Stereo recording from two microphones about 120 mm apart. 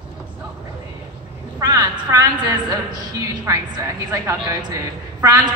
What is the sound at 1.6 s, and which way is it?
A woman's voice, 30° right (ahead or behind).